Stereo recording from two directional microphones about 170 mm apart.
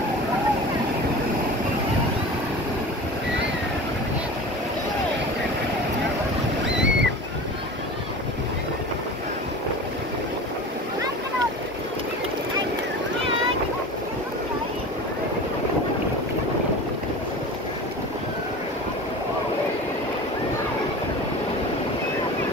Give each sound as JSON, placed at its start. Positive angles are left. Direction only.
{"t": 6.6, "sound": "boat", "side_deg": -90}